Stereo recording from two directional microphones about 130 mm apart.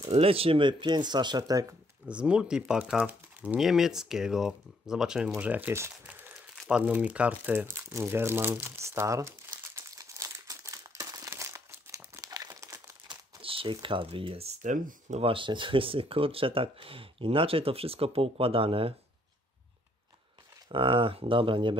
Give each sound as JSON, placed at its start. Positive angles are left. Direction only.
{"t": 0.1, "sound": "speech", "side_deg": -50}
{"t": 2.0, "sound": "speech", "side_deg": -10}
{"t": 6.5, "sound": "crumpling", "side_deg": 0}
{"t": 6.8, "sound": "speech", "side_deg": -10}
{"t": 9.8, "sound": "crumpling", "side_deg": -25}
{"t": 13.1, "sound": "crumpling", "side_deg": -45}
{"t": 13.8, "sound": "speech", "side_deg": -40}
{"t": 14.6, "sound": "speech", "side_deg": -75}
{"t": 15.2, "sound": "speech", "side_deg": -40}
{"t": 20.6, "sound": "speech", "side_deg": -40}